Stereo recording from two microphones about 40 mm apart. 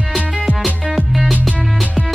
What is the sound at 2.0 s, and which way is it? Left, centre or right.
Music, right.